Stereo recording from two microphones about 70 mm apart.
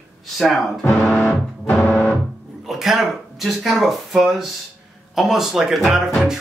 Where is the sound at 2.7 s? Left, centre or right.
Centre.